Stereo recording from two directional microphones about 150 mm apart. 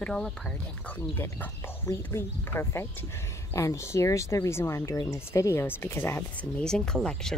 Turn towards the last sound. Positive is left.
turn(degrees=5)  # may be behind; listen again after turning